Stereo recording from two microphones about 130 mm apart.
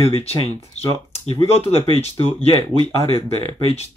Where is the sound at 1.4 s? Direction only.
50° left (ahead or behind).